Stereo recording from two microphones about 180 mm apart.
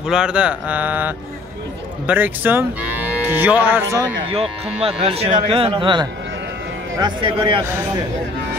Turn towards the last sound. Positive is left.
turn(degrees=-25)  # may be behind; listen again after turning